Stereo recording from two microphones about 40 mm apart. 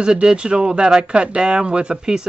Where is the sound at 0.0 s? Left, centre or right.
Right.